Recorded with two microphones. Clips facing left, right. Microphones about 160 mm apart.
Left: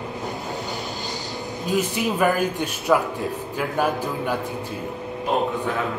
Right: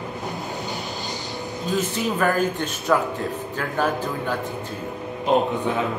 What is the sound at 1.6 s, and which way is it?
Speech, 10° left (ahead or behind).